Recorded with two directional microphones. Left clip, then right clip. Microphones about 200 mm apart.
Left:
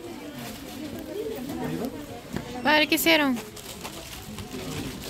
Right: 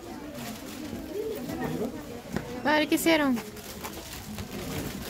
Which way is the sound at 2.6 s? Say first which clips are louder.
Left 4 dB; 10° right (ahead or behind).